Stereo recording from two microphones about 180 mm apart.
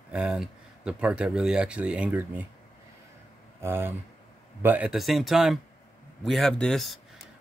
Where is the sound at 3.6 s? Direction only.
15° right (ahead or behind).